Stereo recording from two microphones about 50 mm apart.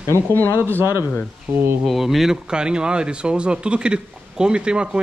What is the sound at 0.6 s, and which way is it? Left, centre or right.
Speech, right.